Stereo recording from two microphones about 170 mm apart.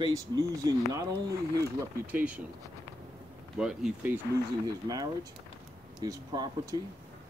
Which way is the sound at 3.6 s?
5° right (ahead or behind).